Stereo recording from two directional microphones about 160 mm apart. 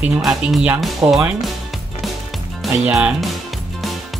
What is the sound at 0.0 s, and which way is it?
Speech, 5° right (ahead or behind).